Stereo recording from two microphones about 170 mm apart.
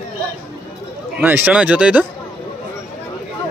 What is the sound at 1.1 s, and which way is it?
Speech, 10° right (ahead or behind).